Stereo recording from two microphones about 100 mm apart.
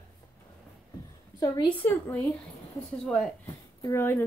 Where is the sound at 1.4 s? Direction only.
45° left (ahead or behind).